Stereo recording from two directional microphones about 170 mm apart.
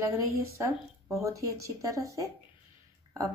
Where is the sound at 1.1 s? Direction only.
20° right (ahead or behind).